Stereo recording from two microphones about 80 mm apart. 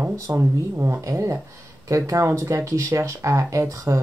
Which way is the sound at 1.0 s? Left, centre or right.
Right.